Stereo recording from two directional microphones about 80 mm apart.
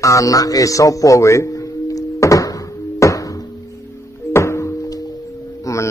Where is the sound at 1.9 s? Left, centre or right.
Left.